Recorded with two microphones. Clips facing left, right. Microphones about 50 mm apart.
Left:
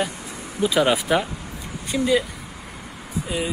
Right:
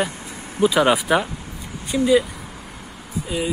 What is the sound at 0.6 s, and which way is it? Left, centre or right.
Speech, right.